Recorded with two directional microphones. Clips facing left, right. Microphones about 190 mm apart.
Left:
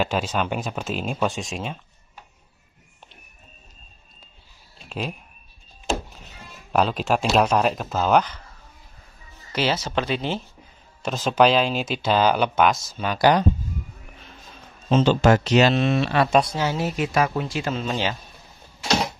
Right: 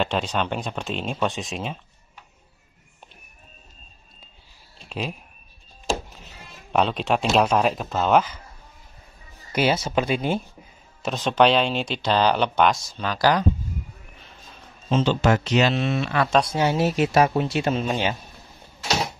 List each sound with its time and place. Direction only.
0.0 s speech: 5° left (ahead or behind)
4.7 s a sound: centre (ahead or behind)
6.7 s speech: centre (ahead or behind)
9.5 s speech: 10° right (ahead or behind)
11.0 s speech: centre (ahead or behind)
14.9 s a man's voice: 45° left (ahead or behind)
16.3 s speech: centre (ahead or behind)
16.5 s speech: 20° right (ahead or behind)